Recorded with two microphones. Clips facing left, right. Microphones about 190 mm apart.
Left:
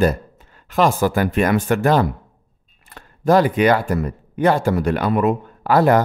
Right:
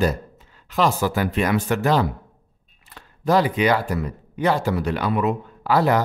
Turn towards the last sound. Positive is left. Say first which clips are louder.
# left 4 dB
turn(degrees=50)  # may be behind; listen again after turning